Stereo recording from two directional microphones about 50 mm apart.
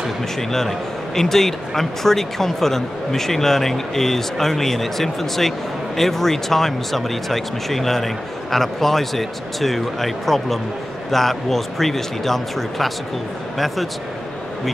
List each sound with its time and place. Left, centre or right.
0.4 s a man's voice: centre